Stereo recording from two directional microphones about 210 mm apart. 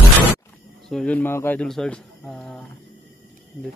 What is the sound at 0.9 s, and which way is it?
Speech, 5° left (ahead or behind).